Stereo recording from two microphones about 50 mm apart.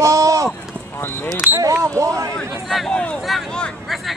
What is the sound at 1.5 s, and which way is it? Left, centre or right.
Speech, right.